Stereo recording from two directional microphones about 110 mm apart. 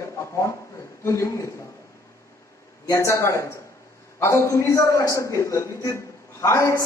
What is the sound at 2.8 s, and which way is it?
A man's voice, 25° left (ahead or behind).